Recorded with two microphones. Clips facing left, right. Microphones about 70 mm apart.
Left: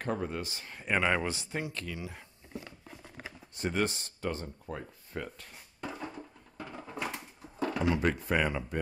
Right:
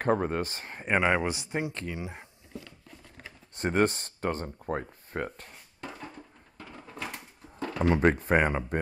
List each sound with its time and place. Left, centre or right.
0.0 s speech: right
0.8 s speech: right
2.9 s a sound: centre
3.5 s speech: right
5.8 s a sound: centre
7.8 s speech: right